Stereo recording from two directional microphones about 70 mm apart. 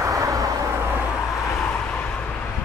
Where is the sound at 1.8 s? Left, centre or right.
Centre.